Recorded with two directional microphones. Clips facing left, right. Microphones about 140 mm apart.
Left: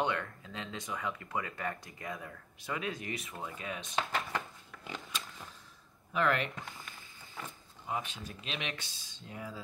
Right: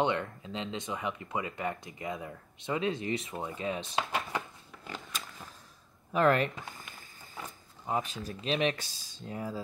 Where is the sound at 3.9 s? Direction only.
5° right (ahead or behind).